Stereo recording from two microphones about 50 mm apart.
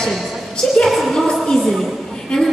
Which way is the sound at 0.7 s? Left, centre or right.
Centre.